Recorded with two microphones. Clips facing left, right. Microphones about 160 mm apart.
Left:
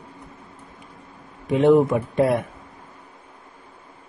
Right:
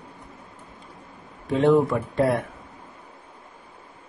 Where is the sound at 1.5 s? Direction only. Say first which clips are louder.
Left 3 dB; 20° left (ahead or behind).